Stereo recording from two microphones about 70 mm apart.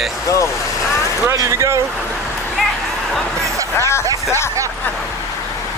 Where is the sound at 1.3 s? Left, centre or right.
Right.